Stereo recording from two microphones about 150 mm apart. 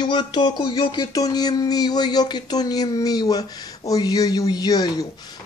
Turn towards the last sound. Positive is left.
turn(degrees=25)  # may be behind; listen again after turning